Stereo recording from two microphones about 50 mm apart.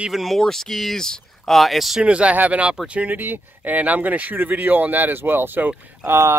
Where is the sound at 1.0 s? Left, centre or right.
Centre.